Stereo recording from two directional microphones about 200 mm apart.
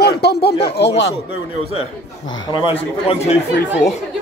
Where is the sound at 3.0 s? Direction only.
30° left (ahead or behind).